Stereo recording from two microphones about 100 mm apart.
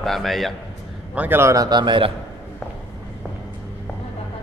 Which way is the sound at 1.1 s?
15° right (ahead or behind).